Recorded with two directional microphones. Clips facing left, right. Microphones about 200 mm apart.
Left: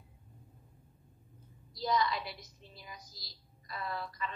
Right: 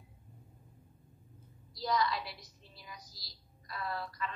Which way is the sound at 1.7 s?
20° left (ahead or behind).